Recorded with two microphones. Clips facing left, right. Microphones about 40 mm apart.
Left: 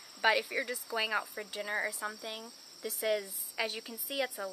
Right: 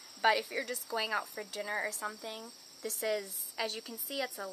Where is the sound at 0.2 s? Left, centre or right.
Centre.